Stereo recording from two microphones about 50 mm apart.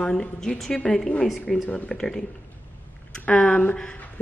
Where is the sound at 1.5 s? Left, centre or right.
Centre.